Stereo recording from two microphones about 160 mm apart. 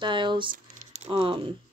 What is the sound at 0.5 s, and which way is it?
Speech, 45° right (ahead or behind).